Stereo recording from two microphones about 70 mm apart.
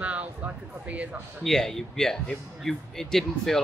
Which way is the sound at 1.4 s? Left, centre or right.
Centre.